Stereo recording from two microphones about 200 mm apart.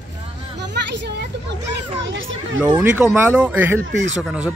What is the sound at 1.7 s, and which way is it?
Speech, 70° right (ahead or behind).